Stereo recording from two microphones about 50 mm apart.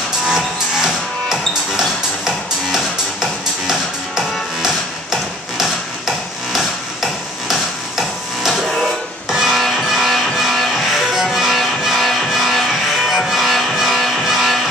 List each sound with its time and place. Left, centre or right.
0.7 s music: centre
4.6 s hammer: centre
8.5 s music: centre